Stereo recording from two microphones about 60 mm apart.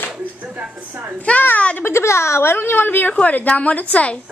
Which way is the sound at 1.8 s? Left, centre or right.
Left.